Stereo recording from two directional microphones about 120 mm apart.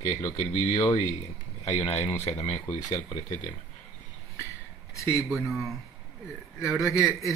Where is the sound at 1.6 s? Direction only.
65° left (ahead or behind).